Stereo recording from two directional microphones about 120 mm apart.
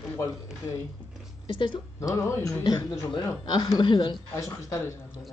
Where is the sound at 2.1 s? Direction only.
25° left (ahead or behind).